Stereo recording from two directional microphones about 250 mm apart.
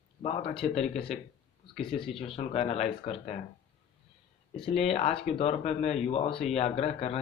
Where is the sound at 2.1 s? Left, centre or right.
Left.